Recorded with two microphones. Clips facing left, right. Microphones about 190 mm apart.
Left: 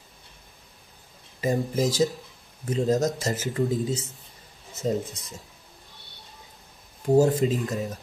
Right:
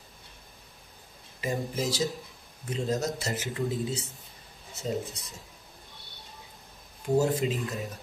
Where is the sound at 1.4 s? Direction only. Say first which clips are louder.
Left 6 dB; 40° left (ahead or behind).